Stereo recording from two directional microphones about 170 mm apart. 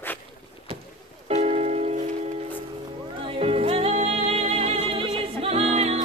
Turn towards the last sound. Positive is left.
turn(degrees=-40)  # may be behind; listen again after turning